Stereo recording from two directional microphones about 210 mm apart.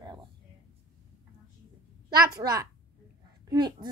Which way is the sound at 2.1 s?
20° right (ahead or behind).